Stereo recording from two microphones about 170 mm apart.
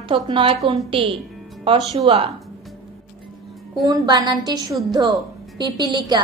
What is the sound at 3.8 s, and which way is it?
A woman's voice, 20° right (ahead or behind).